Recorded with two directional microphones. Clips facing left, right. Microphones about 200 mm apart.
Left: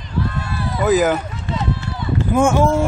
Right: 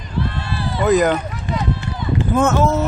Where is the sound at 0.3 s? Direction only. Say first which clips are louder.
Even; 30° right (ahead or behind).